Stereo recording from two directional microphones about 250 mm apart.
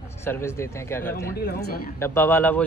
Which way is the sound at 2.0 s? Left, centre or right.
Centre.